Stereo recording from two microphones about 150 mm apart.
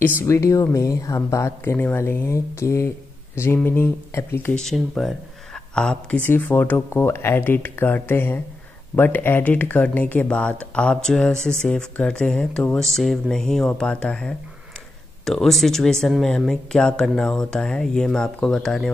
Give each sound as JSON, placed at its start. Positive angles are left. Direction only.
{"t": 0.2, "sound": "speech", "side_deg": 20}
{"t": 4.6, "sound": "speech", "side_deg": 0}